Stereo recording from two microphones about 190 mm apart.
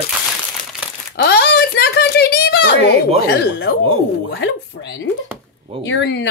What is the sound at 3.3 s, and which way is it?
Speech, 55° left (ahead or behind).